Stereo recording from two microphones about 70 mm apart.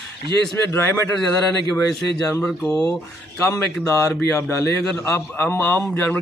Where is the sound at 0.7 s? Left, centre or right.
Left.